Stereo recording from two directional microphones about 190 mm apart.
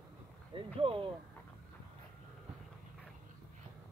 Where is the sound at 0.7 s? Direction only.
30° right (ahead or behind).